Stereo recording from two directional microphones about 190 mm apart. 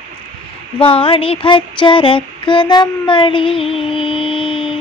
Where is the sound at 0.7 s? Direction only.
30° left (ahead or behind).